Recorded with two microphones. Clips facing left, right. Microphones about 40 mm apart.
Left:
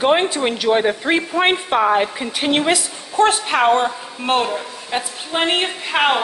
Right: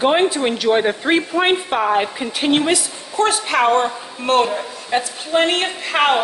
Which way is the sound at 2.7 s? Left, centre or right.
Left.